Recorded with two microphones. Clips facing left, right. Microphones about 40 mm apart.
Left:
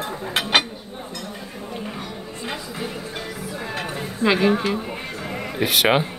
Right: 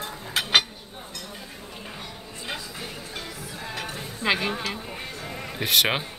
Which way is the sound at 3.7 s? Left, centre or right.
Left.